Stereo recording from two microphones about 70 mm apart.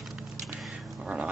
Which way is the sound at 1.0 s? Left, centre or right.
Centre.